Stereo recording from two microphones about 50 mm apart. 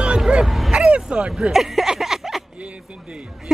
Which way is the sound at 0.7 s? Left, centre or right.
Centre.